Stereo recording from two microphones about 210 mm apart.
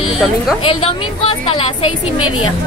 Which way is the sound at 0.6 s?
25° left (ahead or behind).